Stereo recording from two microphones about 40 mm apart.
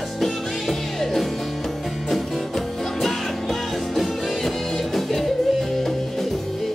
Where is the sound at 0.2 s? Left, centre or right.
Centre.